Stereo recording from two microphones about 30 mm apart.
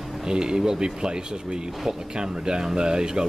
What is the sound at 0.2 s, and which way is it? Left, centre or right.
Speech, right.